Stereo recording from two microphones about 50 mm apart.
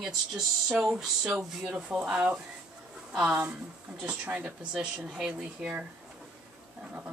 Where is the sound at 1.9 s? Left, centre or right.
Right.